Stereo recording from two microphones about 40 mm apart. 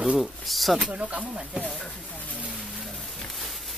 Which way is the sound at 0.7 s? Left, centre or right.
Right.